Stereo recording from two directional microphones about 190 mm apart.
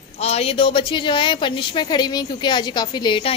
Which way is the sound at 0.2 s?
35° left (ahead or behind).